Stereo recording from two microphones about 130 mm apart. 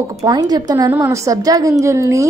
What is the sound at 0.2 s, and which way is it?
A woman's voice, 30° right (ahead or behind).